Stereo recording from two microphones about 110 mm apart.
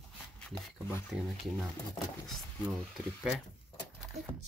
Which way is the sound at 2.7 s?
Centre (ahead or behind).